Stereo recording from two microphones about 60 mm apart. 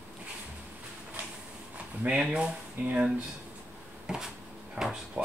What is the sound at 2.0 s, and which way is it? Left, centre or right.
Speech, centre.